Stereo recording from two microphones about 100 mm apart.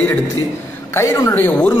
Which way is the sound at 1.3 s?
20° left (ahead or behind).